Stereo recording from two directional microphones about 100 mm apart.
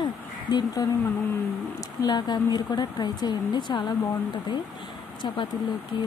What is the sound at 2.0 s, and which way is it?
Speech, 45° left (ahead or behind).